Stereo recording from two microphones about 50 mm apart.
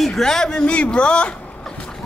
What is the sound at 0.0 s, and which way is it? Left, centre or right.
Speech, centre.